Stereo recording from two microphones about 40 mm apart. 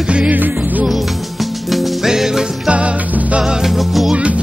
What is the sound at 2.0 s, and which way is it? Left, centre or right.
Music, centre.